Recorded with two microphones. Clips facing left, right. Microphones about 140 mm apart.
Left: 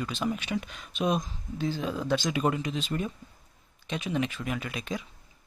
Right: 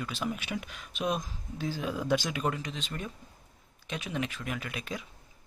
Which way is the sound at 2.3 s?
5° left (ahead or behind).